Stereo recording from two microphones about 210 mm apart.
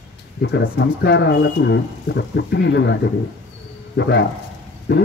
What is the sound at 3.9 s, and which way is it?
Speech, 55° left (ahead or behind).